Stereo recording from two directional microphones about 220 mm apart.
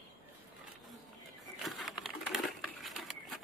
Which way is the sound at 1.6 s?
Centre (ahead or behind).